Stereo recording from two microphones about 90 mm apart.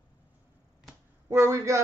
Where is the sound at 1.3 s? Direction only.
30° right (ahead or behind).